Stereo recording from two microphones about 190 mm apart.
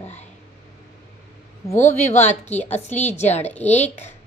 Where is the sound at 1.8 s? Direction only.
35° left (ahead or behind).